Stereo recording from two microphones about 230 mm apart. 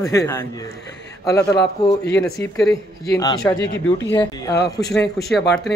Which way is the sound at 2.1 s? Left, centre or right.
Centre.